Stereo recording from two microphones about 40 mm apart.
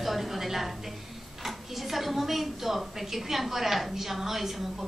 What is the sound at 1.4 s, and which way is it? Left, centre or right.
A woman's voice, centre.